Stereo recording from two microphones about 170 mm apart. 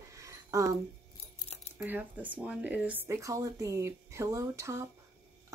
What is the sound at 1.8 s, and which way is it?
Speech, 10° right (ahead or behind).